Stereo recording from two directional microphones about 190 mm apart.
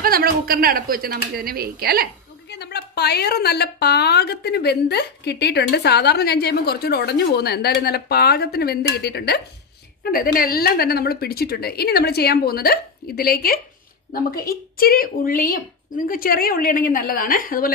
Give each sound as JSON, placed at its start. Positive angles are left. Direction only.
{"t": 0.0, "sound": "a woman's voice", "side_deg": -50}
{"t": 2.5, "sound": "a woman's voice", "side_deg": 60}